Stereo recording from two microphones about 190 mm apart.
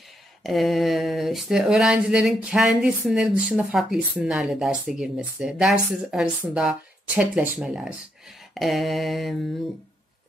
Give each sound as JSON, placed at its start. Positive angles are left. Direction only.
{"t": 0.4, "sound": "speech", "side_deg": 0}